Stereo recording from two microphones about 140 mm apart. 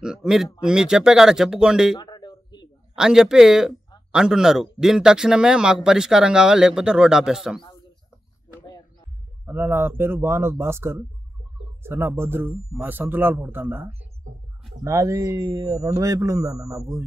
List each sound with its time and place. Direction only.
0.0 s speech: 5° right (ahead or behind)
2.0 s a sound: 30° left (ahead or behind)
3.0 s speech: 5° right (ahead or behind)
9.5 s a man's voice: 15° right (ahead or behind)